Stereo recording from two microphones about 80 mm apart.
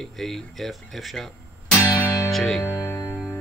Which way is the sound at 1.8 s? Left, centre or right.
Left.